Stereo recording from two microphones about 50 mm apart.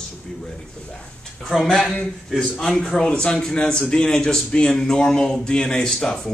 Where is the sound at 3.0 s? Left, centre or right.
Centre.